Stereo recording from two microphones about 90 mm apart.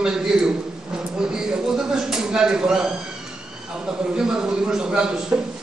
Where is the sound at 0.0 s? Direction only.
10° right (ahead or behind).